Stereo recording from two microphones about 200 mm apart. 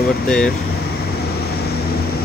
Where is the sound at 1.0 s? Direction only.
50° left (ahead or behind).